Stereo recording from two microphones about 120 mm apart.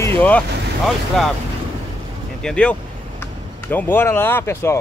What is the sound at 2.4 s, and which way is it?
Speech, 10° left (ahead or behind).